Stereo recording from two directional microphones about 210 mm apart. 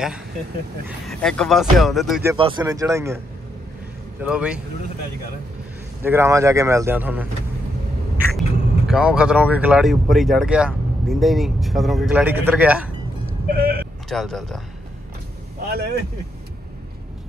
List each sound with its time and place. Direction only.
0.8 s speech: centre (ahead or behind)
2.3 s speech: 25° right (ahead or behind)
4.2 s speech: 5° right (ahead or behind)
6.0 s speech: 15° right (ahead or behind)
13.6 s a sound: 45° right (ahead or behind)
14.0 s speech: centre (ahead or behind)